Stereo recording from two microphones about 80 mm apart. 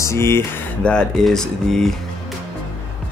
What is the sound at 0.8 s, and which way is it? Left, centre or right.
Speech, centre.